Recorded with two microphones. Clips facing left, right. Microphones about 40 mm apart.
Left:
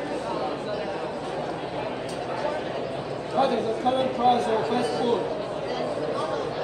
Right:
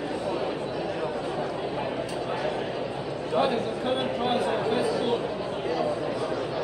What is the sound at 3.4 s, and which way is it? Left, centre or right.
Speech, centre.